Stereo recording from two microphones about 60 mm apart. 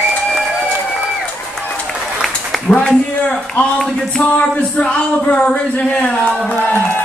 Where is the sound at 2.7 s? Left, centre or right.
Centre.